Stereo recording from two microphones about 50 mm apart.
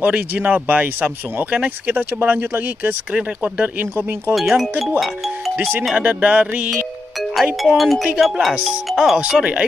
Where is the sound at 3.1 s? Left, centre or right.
Right.